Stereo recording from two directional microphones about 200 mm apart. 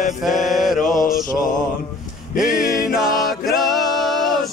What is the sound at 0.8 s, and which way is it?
Mantra, 40° left (ahead or behind).